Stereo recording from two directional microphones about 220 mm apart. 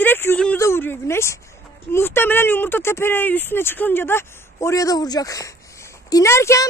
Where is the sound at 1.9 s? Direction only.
10° left (ahead or behind).